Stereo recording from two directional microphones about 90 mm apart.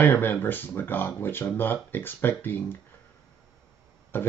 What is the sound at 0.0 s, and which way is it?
Speech, 25° left (ahead or behind).